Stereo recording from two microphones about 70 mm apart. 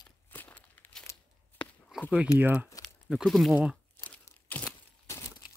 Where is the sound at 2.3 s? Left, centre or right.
Right.